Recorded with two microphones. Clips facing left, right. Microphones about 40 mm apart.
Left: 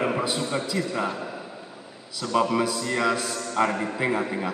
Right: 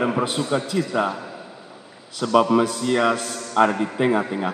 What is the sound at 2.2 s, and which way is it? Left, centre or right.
A man's voice, right.